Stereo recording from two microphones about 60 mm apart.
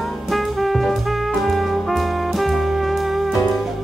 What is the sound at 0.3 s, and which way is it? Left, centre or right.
Music, centre.